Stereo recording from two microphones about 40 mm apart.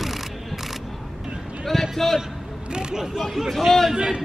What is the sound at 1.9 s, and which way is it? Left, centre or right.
Speech, centre.